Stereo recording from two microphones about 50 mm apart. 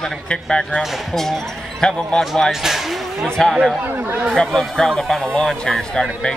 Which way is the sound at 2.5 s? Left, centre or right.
Centre.